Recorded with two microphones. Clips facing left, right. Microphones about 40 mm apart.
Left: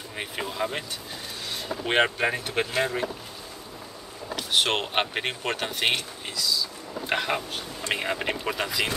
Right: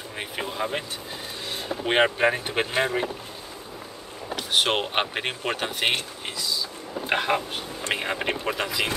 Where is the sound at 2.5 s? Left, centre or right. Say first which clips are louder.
Right 2 dB; right.